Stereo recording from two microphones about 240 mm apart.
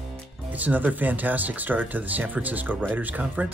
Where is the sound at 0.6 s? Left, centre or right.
Centre.